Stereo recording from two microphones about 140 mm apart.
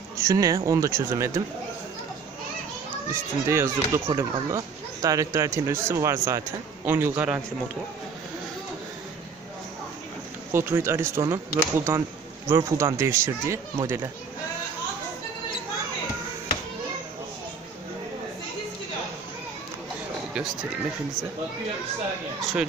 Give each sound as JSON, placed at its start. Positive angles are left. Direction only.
{"t": 0.2, "sound": "a child's voice", "side_deg": -20}
{"t": 3.1, "sound": "a child's voice", "side_deg": -20}
{"t": 10.5, "sound": "a child's voice", "side_deg": -15}